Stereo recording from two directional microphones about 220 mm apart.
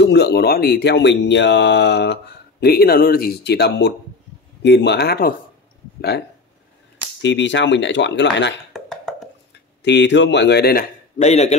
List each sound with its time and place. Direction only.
0.0 s speech: 50° left (ahead or behind)
8.7 s beatboxing: centre (ahead or behind)
9.8 s speech: 55° left (ahead or behind); by 11.5 s 30° left (ahead or behind)